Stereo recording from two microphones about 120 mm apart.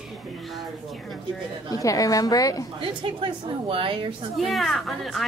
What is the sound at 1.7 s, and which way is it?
Speech, 30° left (ahead or behind).